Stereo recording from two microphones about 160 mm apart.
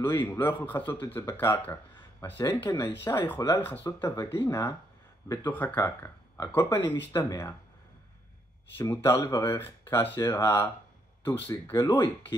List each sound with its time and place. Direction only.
0.0 s speech: 15° left (ahead or behind)
2.3 s speech: 25° left (ahead or behind)
8.7 s speech: 20° left (ahead or behind)